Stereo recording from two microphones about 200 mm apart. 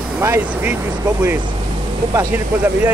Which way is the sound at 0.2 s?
10° right (ahead or behind).